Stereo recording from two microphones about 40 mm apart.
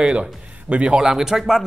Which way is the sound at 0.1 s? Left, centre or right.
Right.